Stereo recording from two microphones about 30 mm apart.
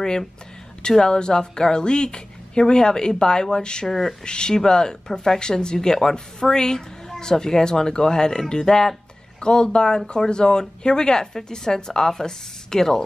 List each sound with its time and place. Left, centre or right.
0.8 s a woman's voice: left
3.8 s speech: centre
4.2 s a woman's voice: left